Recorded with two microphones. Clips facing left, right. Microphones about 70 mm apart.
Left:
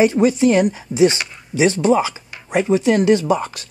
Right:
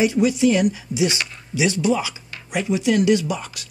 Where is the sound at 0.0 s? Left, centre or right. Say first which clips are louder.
Left 3 dB; left.